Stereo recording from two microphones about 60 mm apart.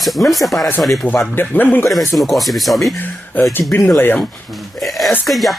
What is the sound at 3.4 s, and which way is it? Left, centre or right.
Speech, left.